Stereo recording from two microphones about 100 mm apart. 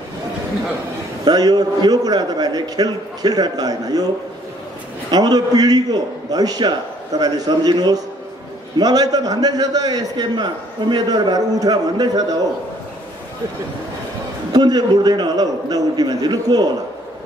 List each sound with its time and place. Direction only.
1.2 s a man's voice: 40° right (ahead or behind)
5.1 s a man's voice: 40° right (ahead or behind)
14.5 s a man's voice: 45° right (ahead or behind)